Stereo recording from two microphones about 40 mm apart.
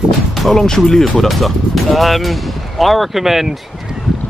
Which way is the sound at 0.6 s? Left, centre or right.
Centre.